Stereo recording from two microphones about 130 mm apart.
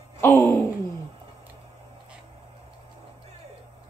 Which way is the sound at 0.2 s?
20° left (ahead or behind).